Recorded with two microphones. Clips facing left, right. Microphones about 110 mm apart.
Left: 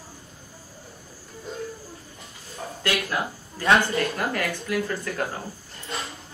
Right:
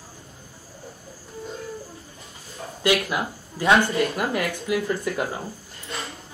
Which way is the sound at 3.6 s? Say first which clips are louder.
Right 2 dB; 15° right (ahead or behind).